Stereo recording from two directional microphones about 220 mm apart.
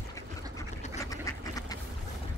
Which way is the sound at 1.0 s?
15° left (ahead or behind).